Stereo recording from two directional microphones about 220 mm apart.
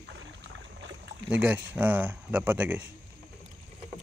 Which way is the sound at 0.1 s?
55° right (ahead or behind).